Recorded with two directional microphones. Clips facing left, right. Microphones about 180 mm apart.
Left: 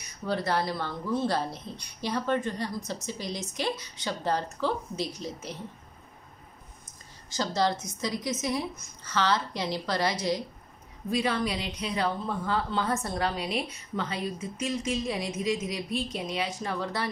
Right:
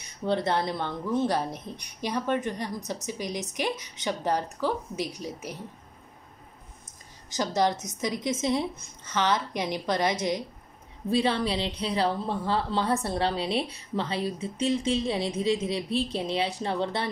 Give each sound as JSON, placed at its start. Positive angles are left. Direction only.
{"t": 0.0, "sound": "speech", "side_deg": -25}
{"t": 7.3, "sound": "a woman's voice", "side_deg": -15}
{"t": 11.1, "sound": "a woman's voice", "side_deg": -30}